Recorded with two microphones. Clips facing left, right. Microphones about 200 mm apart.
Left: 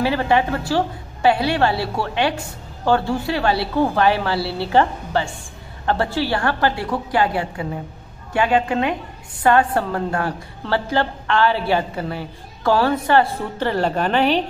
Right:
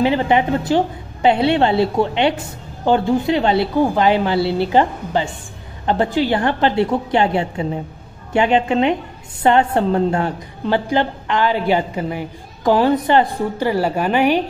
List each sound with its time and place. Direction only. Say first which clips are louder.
0.0 s a woman's voice: right 3 dB; 20° right (ahead or behind)